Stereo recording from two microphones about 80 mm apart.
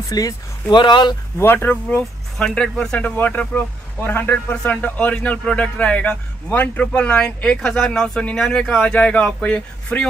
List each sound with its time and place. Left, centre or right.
0.1 s speech: left
0.7 s speech: left
1.4 s speech: left; by 3.1 s centre
3.2 s speech: left